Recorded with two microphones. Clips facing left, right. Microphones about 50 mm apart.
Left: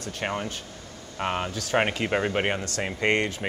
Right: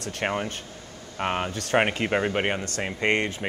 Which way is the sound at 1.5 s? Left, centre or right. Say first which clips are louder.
Right 2 dB; right.